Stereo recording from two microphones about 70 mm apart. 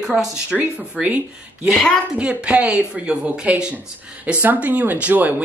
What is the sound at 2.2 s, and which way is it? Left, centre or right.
Speech, centre.